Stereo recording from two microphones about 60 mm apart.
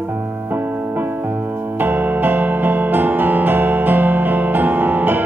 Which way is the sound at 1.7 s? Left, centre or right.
Right.